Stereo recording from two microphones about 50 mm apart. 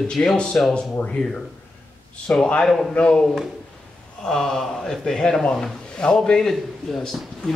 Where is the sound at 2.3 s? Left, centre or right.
Left.